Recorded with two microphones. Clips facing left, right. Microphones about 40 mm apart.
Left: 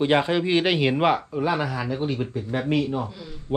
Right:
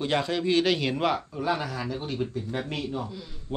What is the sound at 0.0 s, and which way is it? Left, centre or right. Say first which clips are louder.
Speech: left 6 dB; left.